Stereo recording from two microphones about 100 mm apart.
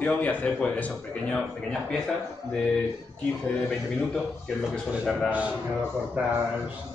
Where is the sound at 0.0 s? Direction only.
15° left (ahead or behind).